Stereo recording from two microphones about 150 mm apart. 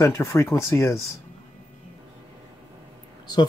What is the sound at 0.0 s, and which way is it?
Speech, 20° left (ahead or behind).